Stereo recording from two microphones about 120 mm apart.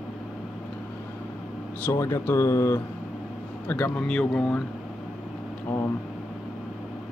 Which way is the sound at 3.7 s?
10° left (ahead or behind).